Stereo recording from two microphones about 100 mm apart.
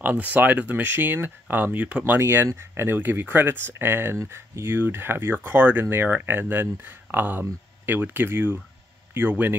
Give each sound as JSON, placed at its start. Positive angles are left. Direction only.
{"t": 0.0, "sound": "speech", "side_deg": -15}
{"t": 2.1, "sound": "speech", "side_deg": -25}